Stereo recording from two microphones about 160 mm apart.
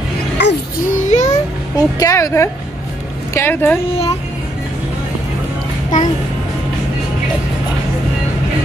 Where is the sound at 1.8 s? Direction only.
20° left (ahead or behind).